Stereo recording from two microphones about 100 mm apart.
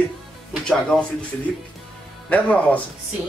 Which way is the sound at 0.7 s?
10° left (ahead or behind).